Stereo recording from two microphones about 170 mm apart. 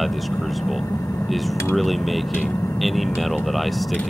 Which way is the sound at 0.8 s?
20° left (ahead or behind).